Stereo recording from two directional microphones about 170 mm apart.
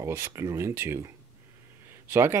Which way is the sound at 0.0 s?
15° right (ahead or behind).